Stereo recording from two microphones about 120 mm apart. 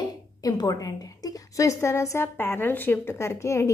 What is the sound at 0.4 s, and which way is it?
A woman's voice, 30° left (ahead or behind).